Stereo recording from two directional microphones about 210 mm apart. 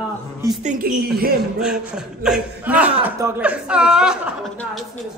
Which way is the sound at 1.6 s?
5° right (ahead or behind).